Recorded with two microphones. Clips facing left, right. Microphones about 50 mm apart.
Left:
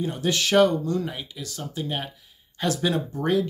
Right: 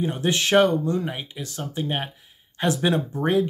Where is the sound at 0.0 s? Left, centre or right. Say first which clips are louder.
Right 2 dB; right.